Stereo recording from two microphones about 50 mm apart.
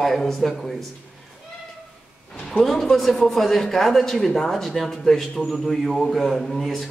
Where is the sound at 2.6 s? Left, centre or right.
Centre.